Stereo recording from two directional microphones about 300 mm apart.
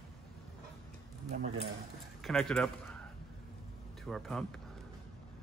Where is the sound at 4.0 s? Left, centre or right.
Centre.